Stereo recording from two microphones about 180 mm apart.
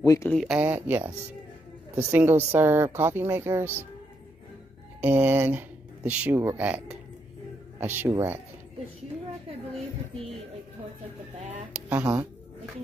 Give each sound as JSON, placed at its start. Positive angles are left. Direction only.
{"t": 0.0, "sound": "speech", "side_deg": 20}
{"t": 0.3, "sound": "speech", "side_deg": 0}
{"t": 0.6, "sound": "speech", "side_deg": -10}
{"t": 5.0, "sound": "speech", "side_deg": -10}
{"t": 11.7, "sound": "speech", "side_deg": -5}